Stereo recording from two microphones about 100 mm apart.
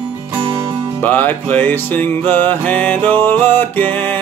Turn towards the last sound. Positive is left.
turn(degrees=20)  # may be behind; listen again after turning